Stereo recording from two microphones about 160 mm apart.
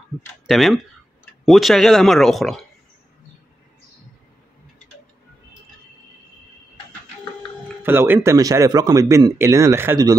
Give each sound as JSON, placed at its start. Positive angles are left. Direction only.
{"t": 0.5, "sound": "speech", "side_deg": 0}
{"t": 7.8, "sound": "a man's voice", "side_deg": -15}